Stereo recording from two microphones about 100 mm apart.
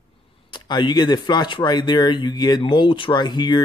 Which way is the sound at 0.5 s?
45° left (ahead or behind).